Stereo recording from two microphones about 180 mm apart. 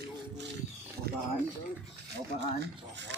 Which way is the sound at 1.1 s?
60° right (ahead or behind).